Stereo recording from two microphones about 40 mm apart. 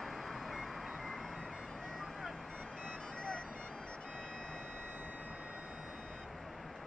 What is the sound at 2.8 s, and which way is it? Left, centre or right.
Music, left.